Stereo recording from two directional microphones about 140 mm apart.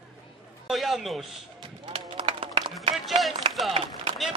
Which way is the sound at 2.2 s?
40° right (ahead or behind).